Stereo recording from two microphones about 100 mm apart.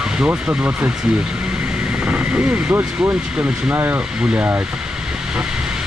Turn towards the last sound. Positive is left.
turn(degrees=-20)  # may be behind; listen again after turning